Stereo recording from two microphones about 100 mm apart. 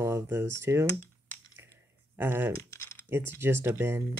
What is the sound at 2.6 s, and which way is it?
Typing, 25° left (ahead or behind).